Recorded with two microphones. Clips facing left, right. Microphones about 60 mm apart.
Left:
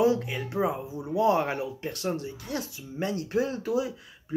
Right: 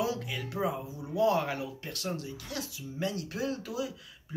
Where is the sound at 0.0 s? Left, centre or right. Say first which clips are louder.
Left 8 dB; left.